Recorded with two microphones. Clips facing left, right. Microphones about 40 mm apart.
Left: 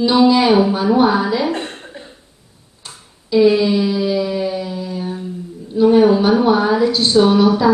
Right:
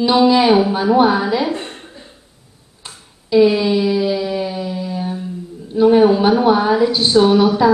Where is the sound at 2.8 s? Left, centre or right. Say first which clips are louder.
Even; centre.